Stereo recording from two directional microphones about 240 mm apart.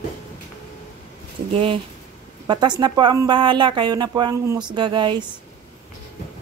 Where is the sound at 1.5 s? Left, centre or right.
Right.